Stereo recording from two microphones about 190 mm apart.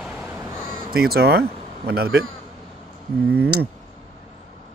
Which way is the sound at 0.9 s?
55° right (ahead or behind).